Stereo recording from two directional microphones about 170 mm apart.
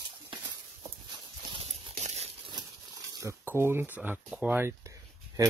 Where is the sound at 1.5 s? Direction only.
35° right (ahead or behind).